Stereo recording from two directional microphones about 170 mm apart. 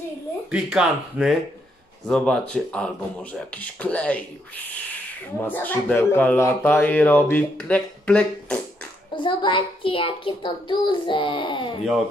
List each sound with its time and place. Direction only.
0.5 s speech: 5° right (ahead or behind)
9.1 s a child's voice: 30° left (ahead or behind)